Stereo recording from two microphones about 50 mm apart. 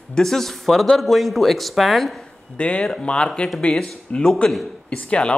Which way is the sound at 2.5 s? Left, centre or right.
Left.